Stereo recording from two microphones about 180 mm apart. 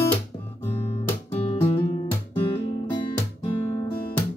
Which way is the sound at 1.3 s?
30° left (ahead or behind).